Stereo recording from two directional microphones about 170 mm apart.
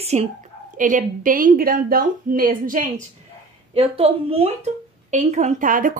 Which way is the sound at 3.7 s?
35° right (ahead or behind).